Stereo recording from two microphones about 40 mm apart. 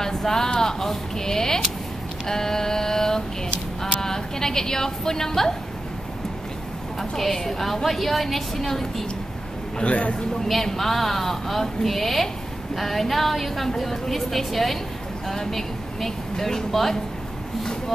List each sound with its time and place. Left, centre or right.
0.0 s a sound: centre
0.6 s speech: centre
2.2 s a sound: centre
4.0 s a woman's voice: centre
7.0 s a woman's voice: centre
9.8 s a man's voice: left
10.5 s a woman's voice: centre